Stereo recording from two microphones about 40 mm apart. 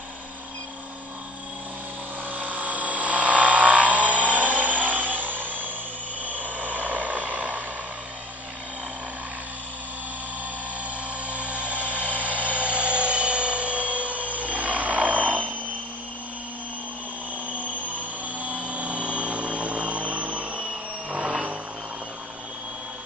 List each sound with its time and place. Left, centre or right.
2.3 s vehicle: right
5.4 s a sound: right
6.2 s vehicle: right
11.2 s a sound: right
12.2 s helicopter: right
17.5 s helicopter: right